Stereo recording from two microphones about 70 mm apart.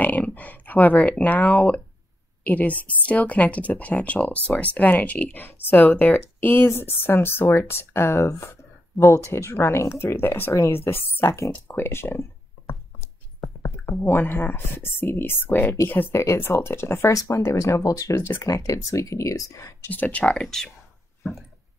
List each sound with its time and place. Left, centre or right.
0.0 s a woman's voice: left
11.5 s a sound: left
13.6 s speech: left
19.9 s speech: left